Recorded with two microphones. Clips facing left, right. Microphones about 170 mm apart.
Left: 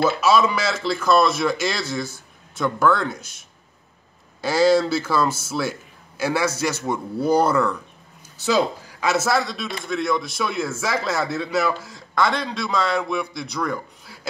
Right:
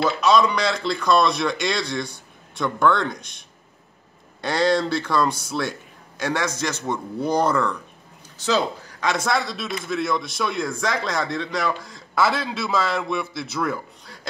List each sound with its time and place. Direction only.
0.0 s speech: 5° left (ahead or behind)